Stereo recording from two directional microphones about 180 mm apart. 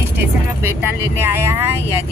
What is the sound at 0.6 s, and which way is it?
Speech, 15° right (ahead or behind).